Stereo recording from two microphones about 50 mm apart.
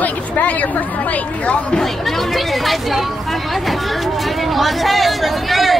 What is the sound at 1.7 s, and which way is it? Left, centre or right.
Speech, centre.